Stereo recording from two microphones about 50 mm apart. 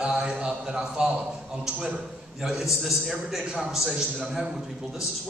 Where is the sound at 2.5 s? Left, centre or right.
Centre.